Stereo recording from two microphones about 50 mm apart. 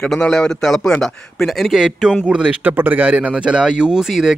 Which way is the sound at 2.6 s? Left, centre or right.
Right.